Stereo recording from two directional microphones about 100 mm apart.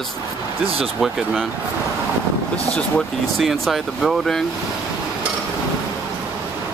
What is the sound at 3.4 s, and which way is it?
Speech, centre (ahead or behind).